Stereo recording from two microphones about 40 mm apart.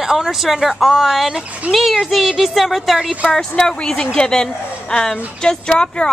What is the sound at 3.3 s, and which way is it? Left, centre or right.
A woman's voice, centre.